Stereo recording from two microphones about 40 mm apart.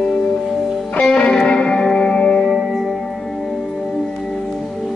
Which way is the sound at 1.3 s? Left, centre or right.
Left.